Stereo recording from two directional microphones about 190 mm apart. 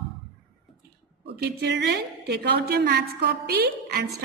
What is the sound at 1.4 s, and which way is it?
A woman's voice, 65° right (ahead or behind).